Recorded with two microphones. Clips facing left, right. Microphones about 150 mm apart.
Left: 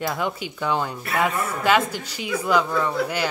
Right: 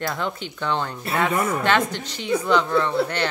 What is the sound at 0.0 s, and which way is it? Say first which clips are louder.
Speech: left 1 dB; 10° left (ahead or behind).